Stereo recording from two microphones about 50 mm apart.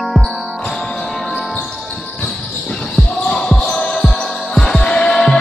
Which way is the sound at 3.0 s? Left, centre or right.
Centre.